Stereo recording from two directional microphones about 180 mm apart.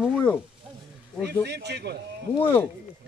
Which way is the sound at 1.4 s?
65° right (ahead or behind).